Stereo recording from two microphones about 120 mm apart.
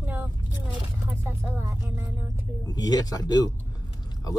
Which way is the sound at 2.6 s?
30° left (ahead or behind).